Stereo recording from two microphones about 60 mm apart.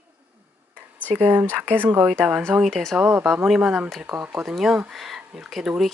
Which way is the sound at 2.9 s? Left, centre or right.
Right.